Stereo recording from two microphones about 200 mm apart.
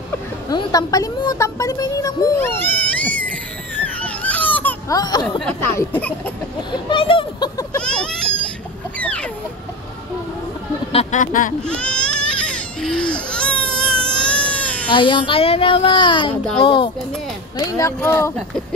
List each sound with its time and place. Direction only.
0.5 s a sound: 20° left (ahead or behind)
5.4 s speech: 10° left (ahead or behind)
6.9 s speech: 25° left (ahead or behind)
7.8 s baby cry: 5° left (ahead or behind)
9.0 s chicken: 5° left (ahead or behind)
10.9 s speech: 35° left (ahead or behind)
11.6 s baby cry: 5° left (ahead or behind)
14.9 s a child's voice: 25° left (ahead or behind)